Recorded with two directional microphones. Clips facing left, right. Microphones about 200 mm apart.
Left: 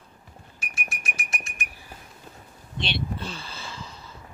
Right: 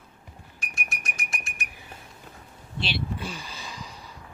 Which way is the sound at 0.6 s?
5° left (ahead or behind).